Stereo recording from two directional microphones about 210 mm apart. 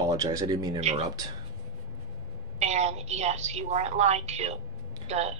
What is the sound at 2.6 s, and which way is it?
A woman's voice, 30° right (ahead or behind).